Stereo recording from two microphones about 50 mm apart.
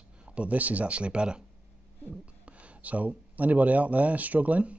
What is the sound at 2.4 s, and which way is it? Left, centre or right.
Speech, right.